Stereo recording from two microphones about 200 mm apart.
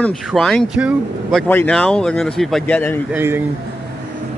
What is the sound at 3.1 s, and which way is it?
Speech, 10° right (ahead or behind).